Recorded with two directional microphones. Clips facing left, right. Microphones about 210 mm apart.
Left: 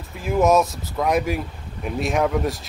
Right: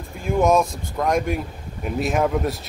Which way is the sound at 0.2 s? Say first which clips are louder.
Left 1 dB; centre (ahead or behind).